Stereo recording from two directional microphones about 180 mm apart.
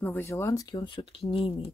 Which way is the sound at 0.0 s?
10° left (ahead or behind).